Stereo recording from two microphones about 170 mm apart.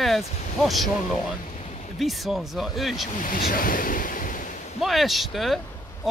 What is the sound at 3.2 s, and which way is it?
Speech, 55° left (ahead or behind).